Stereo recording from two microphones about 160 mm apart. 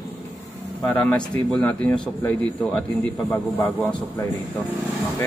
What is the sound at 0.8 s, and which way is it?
A man's voice, 5° left (ahead or behind).